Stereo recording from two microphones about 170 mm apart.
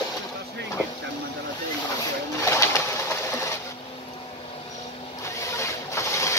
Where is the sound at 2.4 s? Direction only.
15° left (ahead or behind).